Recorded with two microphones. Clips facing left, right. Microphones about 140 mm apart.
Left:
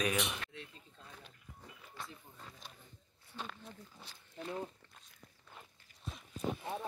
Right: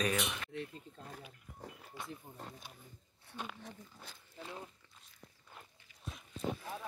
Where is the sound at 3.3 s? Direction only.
10° right (ahead or behind).